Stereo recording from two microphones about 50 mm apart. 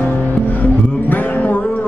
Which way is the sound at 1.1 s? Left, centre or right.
Left.